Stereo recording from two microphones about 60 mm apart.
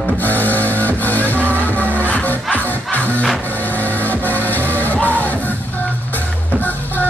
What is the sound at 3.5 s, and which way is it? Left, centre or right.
Vehicle, left.